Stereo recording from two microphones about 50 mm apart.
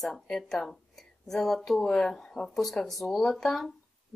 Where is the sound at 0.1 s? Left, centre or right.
Centre.